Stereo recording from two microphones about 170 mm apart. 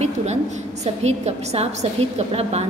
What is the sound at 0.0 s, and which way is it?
A woman's voice, 40° right (ahead or behind).